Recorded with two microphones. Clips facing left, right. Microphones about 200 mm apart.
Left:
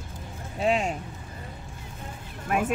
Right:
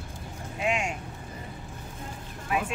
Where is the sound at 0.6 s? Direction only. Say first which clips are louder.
Left 4 dB; 35° left (ahead or behind).